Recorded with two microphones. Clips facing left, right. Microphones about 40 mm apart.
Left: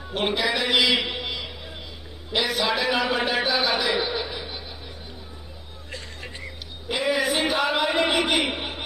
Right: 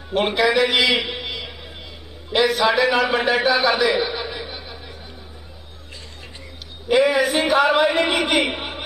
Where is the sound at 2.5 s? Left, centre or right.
Centre; by 3.9 s right.